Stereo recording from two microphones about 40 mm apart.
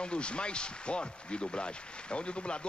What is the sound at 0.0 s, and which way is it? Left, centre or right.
A man's voice, left.